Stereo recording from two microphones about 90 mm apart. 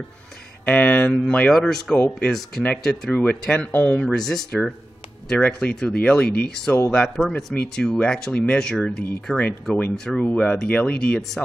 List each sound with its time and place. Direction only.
0.7 s speech: 15° left (ahead or behind)
2.0 s speech: 15° left (ahead or behind)
2.8 s speech: 5° left (ahead or behind)
4.1 s speech: 5° left (ahead or behind)
9.3 s speech: 5° right (ahead or behind)
9.9 s speech: 5° left (ahead or behind)
11.1 s speech: 5° left (ahead or behind)